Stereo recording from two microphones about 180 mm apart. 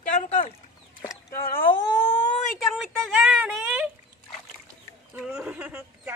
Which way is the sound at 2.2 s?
45° left (ahead or behind).